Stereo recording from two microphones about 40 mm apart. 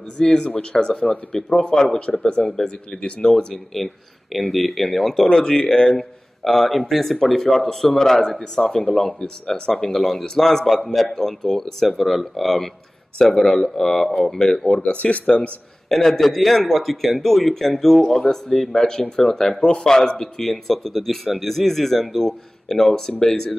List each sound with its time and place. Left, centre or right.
0.4 s speech: left
2.5 s speech: centre
3.5 s a man's voice: centre
5.1 s speech: centre
5.9 s speech: centre
8.8 s speech: left
9.5 s speech: centre
9.9 s a man's voice: centre
14.7 s speech: left
15.9 s a man's voice: centre
19.6 s speech: left
20.3 s speech: centre